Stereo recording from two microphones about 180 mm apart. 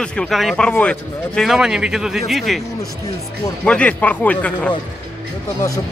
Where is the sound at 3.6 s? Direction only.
5° left (ahead or behind).